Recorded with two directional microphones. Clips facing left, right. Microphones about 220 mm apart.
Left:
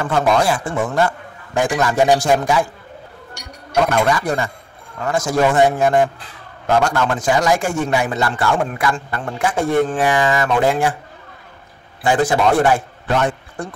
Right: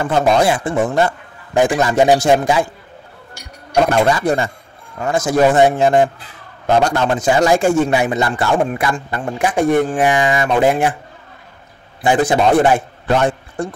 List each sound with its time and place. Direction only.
0.0 s a man's voice: 20° right (ahead or behind)
4.1 s a man's voice: 25° right (ahead or behind)
12.0 s a man's voice: 20° right (ahead or behind)
13.1 s a man's voice: 30° right (ahead or behind)